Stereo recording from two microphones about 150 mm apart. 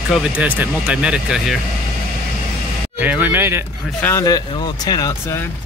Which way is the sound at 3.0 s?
10° right (ahead or behind).